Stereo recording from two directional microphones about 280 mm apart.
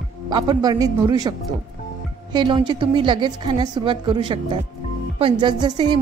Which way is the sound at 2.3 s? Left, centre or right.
Centre.